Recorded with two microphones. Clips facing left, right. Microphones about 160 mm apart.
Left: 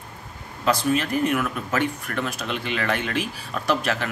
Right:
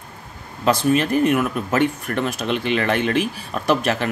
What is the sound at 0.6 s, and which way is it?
Speech, 25° right (ahead or behind).